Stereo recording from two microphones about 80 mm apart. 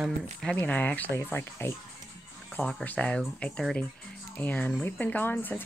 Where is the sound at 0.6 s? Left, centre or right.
Centre.